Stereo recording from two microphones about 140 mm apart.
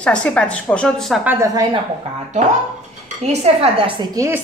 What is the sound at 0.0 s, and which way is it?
Speech, 10° left (ahead or behind).